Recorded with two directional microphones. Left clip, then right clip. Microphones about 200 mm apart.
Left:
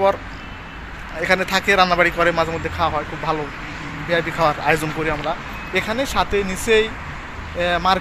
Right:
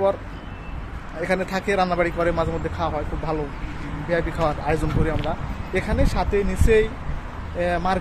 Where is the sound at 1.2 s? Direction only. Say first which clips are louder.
Left 6 dB; 5° right (ahead or behind).